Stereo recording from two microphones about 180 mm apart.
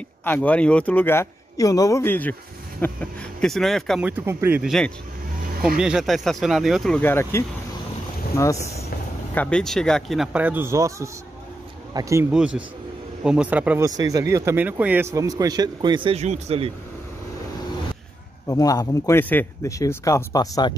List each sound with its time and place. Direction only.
0.2 s speech: 10° left (ahead or behind)
4.0 s speech: 10° right (ahead or behind); by 7.4 s 15° left (ahead or behind)
9.3 s speech: 5° left (ahead or behind); by 12.3 s 15° right (ahead or behind)
13.2 s speech: 5° right (ahead or behind)
13.8 s speech: 20° right (ahead or behind)
15.1 s speech: 20° right (ahead or behind)
18.5 s speech: 20° left (ahead or behind)